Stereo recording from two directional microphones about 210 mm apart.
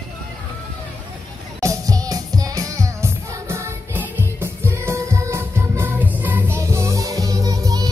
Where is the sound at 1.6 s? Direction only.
15° right (ahead or behind).